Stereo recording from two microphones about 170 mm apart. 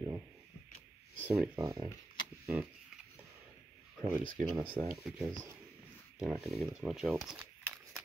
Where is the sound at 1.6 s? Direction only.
20° right (ahead or behind).